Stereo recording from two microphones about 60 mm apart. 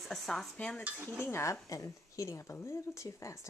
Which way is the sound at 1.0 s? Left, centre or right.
Left.